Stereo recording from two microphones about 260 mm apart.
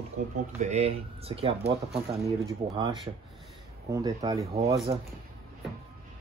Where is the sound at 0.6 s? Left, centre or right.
Right.